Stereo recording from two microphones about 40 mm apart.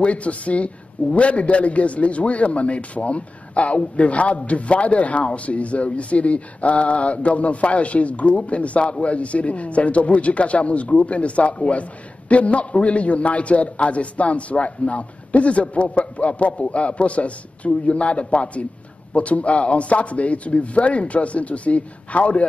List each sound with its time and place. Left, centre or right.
0.0 s speech: left